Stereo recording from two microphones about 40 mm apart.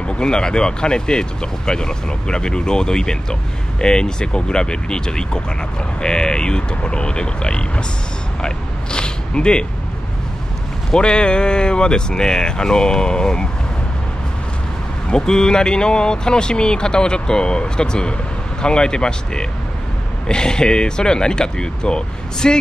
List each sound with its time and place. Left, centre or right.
0.0 s speech: centre
8.4 s a sound: left
10.9 s speech: left
15.0 s speech: centre